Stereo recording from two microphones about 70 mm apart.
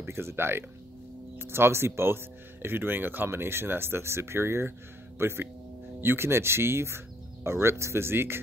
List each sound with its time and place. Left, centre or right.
0.0 s speech: right